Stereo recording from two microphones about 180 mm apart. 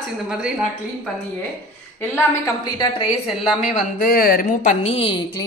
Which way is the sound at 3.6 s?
55° left (ahead or behind).